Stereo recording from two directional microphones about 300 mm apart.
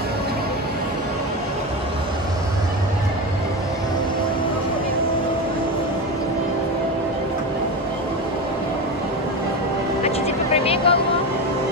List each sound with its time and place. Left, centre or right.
10.0 s vehicle: centre